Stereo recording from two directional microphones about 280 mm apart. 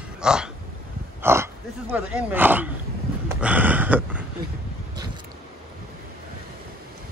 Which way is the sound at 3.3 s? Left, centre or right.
Centre.